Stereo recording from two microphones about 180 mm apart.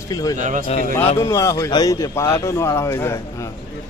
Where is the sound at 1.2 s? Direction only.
20° left (ahead or behind).